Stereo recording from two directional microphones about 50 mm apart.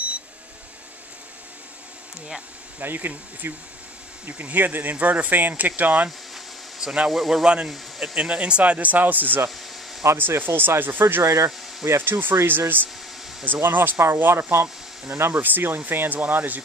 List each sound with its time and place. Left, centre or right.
2.8 s speech: right
6.0 s a sound: centre
7.1 s speech: centre
7.4 s speech: centre; by 9.4 s right
10.0 s speech: right
10.4 s speech: right
11.2 s speech: right
12.0 s speech: right
15.3 s speech: right